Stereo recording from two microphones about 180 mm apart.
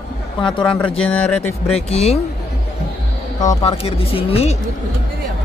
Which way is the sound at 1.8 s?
35° left (ahead or behind).